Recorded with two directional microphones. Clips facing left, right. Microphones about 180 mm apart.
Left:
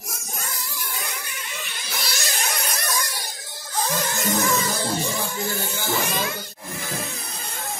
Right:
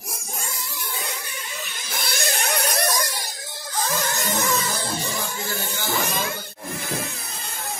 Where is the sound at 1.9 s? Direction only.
50° right (ahead or behind).